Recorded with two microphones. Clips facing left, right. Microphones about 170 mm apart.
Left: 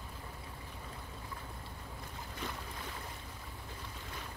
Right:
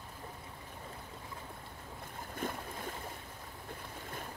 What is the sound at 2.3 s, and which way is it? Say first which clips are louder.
Boat: right 5 dB; 50° right (ahead or behind).